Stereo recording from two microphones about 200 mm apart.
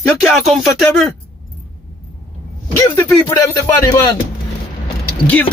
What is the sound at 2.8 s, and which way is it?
Speech, 15° left (ahead or behind).